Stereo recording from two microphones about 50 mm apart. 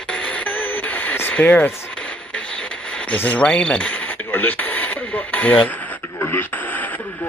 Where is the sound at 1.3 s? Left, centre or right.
Left.